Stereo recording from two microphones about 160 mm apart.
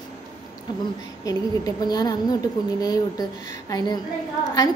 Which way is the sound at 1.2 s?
25° left (ahead or behind).